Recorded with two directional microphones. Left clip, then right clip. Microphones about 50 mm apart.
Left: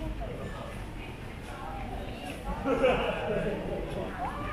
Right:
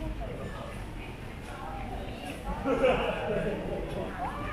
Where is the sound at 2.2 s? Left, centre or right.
Centre.